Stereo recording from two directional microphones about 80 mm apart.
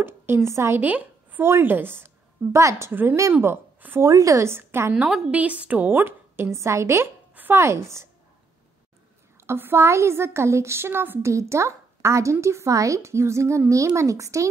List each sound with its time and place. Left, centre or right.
0.0 s speech: right
0.7 s a sound: right
1.4 s a woman's voice: right
2.9 s a woman's voice: right
4.0 s speech: right
4.9 s a woman's voice: centre; by 7.1 s right
7.3 s a sound: right
7.6 s speech: right
9.5 s speech: right